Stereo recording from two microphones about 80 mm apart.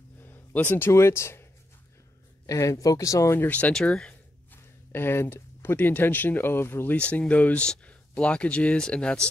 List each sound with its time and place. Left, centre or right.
0.2 s speech: left
2.4 s speech: left
3.3 s speech: left
3.7 s speech: centre
4.9 s speech: left
7.0 s speech: centre